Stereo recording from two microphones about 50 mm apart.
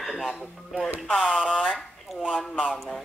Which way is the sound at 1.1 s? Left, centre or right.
Centre.